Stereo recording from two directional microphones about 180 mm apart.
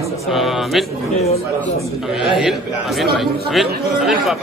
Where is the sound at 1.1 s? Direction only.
35° left (ahead or behind).